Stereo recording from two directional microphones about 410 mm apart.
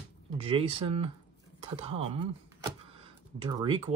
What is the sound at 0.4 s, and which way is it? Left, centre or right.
Speech, centre.